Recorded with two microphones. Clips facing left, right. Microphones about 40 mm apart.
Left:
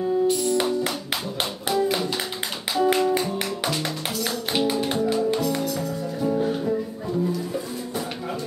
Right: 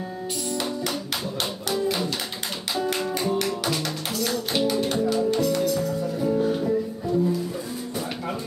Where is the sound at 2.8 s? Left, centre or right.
Centre.